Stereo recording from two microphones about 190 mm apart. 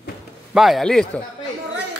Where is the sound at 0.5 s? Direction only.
Centre (ahead or behind).